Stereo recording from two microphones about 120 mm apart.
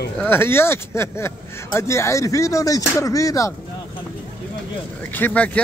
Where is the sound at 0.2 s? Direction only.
20° left (ahead or behind).